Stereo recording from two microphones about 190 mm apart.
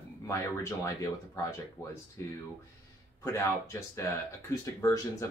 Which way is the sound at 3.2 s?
15° left (ahead or behind).